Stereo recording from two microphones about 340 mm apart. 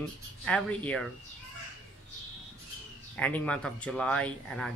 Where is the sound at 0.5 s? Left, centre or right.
Centre.